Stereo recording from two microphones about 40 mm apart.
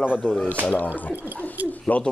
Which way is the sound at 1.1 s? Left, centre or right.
Right.